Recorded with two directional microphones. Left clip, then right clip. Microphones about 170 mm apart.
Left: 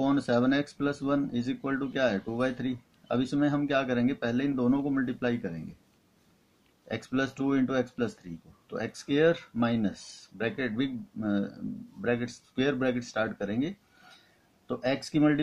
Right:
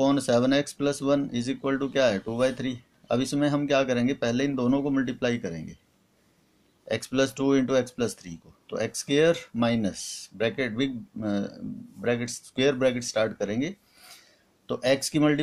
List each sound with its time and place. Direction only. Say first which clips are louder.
0.0 s speech: right 4 dB; 25° right (ahead or behind)
6.9 s speech: right 6 dB; 30° right (ahead or behind)